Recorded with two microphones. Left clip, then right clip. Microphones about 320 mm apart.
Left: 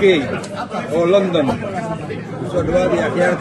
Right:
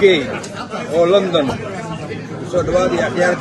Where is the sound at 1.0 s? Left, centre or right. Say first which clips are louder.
Right 2 dB; right.